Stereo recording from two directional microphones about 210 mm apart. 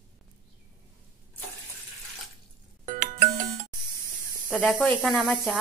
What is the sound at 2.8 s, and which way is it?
Music, 40° right (ahead or behind).